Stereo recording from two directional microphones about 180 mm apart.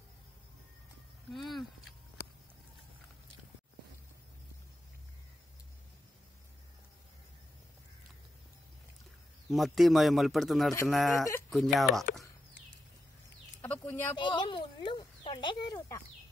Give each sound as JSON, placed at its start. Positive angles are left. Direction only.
{"t": 1.3, "sound": "speech", "side_deg": 0}
{"t": 9.5, "sound": "speech", "side_deg": 0}
{"t": 13.6, "sound": "chicken", "side_deg": 10}
{"t": 14.1, "sound": "speech", "side_deg": 25}